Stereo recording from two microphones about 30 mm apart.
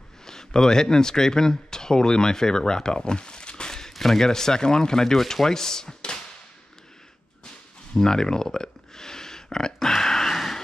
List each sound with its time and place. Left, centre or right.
0.2 s speech: centre
3.9 s speech: centre
7.9 s speech: centre
9.8 s a sound: centre
10.3 s vehicle: centre